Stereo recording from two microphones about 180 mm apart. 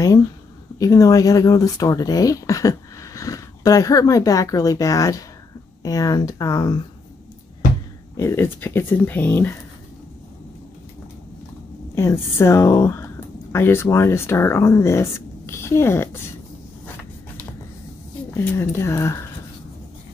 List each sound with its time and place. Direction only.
0.7 s speech: 20° left (ahead or behind)
8.2 s speech: 15° left (ahead or behind)
11.9 s speech: 15° left (ahead or behind)
18.3 s speech: 15° left (ahead or behind)